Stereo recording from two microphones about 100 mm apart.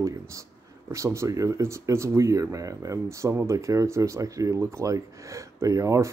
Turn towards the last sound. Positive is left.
turn(degrees=-30)  # may be behind; listen again after turning